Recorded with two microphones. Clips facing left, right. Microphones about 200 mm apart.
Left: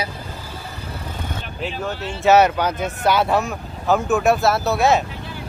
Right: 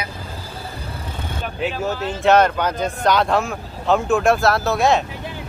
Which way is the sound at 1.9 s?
40° right (ahead or behind).